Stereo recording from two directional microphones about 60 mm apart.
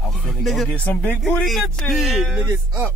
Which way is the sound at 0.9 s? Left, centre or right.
Left.